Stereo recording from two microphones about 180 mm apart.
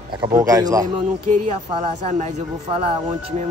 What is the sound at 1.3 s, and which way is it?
Speech, 40° right (ahead or behind).